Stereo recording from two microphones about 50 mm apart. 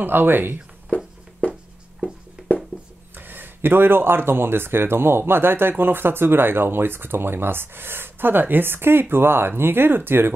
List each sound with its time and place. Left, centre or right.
0.0 s speech: right
0.9 s a sound: left
1.4 s writing: left
3.2 s speech: right